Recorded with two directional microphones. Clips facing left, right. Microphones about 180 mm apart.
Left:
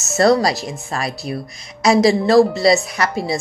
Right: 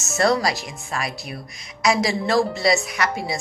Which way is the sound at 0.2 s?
35° left (ahead or behind).